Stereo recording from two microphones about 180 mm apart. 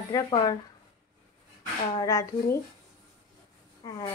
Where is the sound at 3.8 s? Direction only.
20° left (ahead or behind).